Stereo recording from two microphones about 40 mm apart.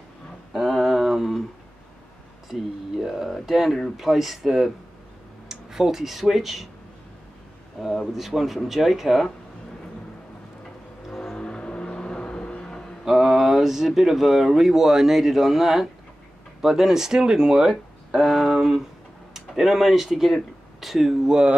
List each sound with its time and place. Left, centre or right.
0.5 s a sound: centre
3.0 s speech: centre
7.8 s speech: centre
11.3 s vehicle: left
13.0 s speech: centre
18.1 s speech: centre
21.3 s speech: right